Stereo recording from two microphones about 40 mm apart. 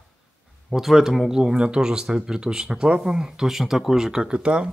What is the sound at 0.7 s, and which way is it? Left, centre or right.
Speech, centre.